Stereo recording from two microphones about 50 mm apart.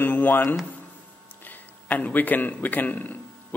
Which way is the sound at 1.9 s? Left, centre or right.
Left.